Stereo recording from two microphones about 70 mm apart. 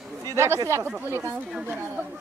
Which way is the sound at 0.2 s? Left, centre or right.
Right.